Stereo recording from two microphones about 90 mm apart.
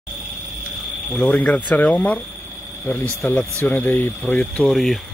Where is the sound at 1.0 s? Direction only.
10° left (ahead or behind).